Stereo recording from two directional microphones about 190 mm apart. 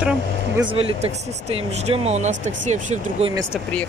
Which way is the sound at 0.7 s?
30° right (ahead or behind).